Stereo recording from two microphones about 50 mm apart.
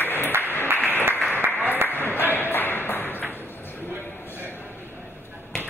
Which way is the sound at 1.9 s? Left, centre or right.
Left.